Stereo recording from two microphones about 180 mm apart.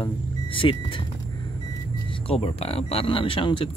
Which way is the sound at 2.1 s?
30° left (ahead or behind).